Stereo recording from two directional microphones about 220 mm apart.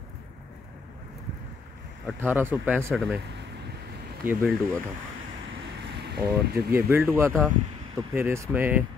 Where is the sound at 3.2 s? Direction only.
50° right (ahead or behind).